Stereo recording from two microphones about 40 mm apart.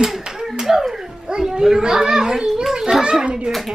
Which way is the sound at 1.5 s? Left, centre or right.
Centre.